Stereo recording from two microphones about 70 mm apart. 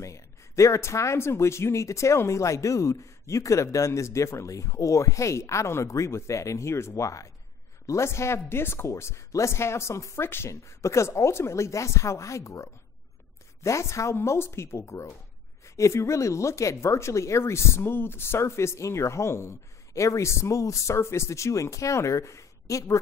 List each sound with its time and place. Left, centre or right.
0.0 s speech: left